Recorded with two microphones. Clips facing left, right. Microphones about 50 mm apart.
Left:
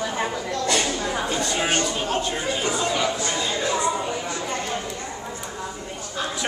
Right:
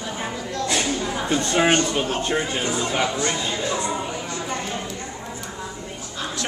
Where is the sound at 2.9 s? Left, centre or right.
Right.